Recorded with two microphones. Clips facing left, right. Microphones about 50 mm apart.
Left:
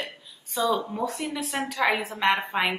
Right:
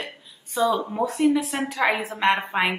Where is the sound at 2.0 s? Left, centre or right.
Centre.